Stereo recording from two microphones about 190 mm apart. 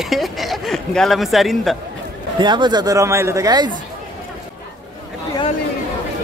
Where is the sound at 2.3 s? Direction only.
25° right (ahead or behind).